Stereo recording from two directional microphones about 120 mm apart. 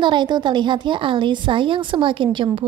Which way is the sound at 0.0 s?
40° right (ahead or behind).